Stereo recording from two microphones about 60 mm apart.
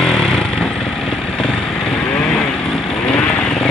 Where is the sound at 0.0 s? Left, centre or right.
Centre.